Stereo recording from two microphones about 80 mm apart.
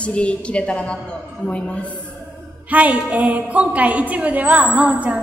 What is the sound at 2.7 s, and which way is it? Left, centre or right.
A woman's voice, centre.